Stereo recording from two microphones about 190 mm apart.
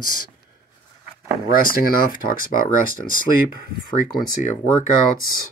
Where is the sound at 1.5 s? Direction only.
45° left (ahead or behind).